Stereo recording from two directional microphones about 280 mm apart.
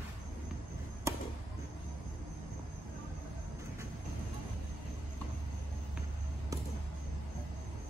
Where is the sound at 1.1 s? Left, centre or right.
Centre.